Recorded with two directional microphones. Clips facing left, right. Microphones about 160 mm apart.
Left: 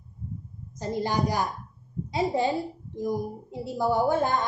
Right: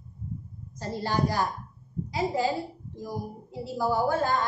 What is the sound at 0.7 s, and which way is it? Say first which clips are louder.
A woman's voice: left 1 dB; 15° left (ahead or behind).